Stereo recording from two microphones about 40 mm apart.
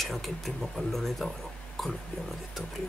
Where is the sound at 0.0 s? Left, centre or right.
Centre.